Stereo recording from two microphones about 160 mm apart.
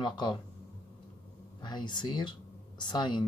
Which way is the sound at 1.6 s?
25° left (ahead or behind).